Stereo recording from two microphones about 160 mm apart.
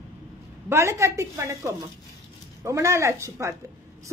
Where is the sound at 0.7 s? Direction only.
15° right (ahead or behind).